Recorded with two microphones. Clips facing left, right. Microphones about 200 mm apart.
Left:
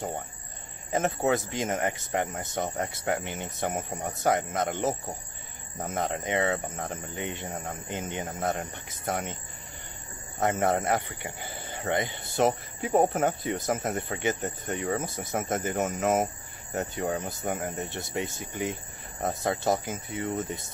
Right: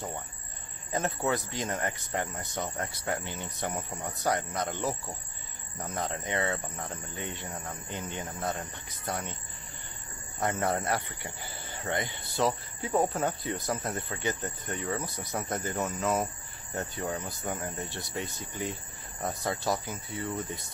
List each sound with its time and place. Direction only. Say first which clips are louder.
1.2 s speech: left 4 dB; 20° left (ahead or behind)
6.5 s speech: left 4 dB; 50° left (ahead or behind)
6.9 s speech: left 4 dB; 20° left (ahead or behind)
10.4 s speech: left 4 dB; 20° left (ahead or behind)
17.0 s speech: left 5 dB; 50° left (ahead or behind)
17.4 s speech: left 4 dB; 20° left (ahead or behind)